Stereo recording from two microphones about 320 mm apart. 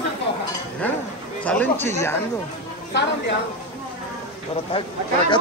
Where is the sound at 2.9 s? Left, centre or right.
Left.